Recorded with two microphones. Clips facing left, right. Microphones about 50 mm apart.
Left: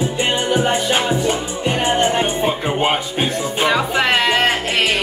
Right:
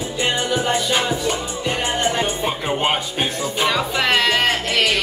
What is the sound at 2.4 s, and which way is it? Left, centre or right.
Music, centre.